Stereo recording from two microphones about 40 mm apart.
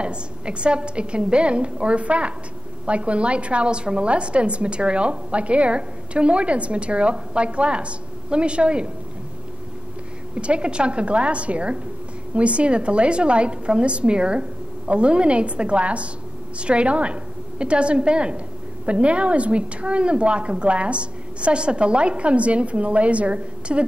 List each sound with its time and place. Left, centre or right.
0.0 s a woman's voice: right
10.3 s a woman's voice: right